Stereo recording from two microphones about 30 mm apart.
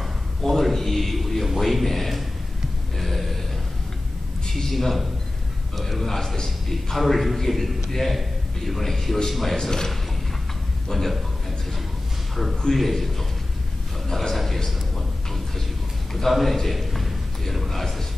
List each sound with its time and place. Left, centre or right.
0.4 s a sound: centre
0.7 s music: centre
1.6 s a man's voice: centre
3.0 s a sound: centre
4.5 s a man's voice: centre
4.7 s a man's voice: centre
7.0 s a man's voice: centre
9.6 s a man's voice: centre
12.7 s a man's voice: centre
14.1 s a sound: centre
16.1 s a man's voice: centre
16.3 s a sound: centre